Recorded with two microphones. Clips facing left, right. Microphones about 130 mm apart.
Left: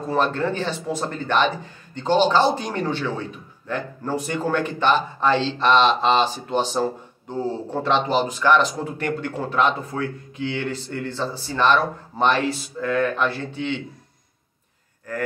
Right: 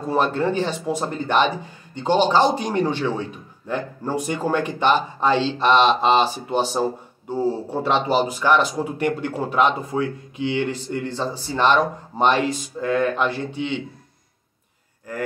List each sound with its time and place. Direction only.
0.1 s a man's voice: 15° right (ahead or behind)